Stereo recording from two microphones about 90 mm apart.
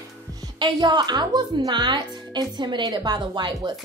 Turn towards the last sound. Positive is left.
turn(degrees=-60)  # may be behind; listen again after turning